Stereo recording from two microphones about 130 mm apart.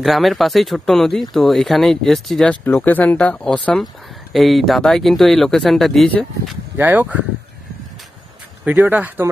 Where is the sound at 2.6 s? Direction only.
15° left (ahead or behind).